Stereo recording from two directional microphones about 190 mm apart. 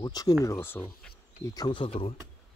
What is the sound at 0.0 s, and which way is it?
Speech, 20° left (ahead or behind).